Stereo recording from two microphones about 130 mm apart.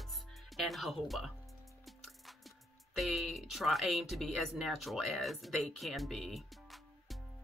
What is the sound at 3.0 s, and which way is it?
Speech, centre (ahead or behind).